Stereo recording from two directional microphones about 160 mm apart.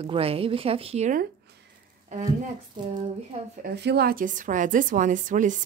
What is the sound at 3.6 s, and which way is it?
A woman's voice, 90° right.